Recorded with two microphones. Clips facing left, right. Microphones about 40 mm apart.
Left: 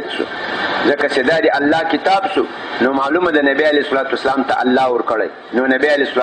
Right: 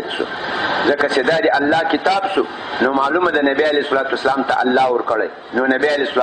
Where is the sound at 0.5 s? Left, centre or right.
Centre.